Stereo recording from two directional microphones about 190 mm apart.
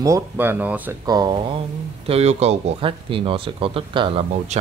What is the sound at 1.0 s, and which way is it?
Speech, 20° right (ahead or behind).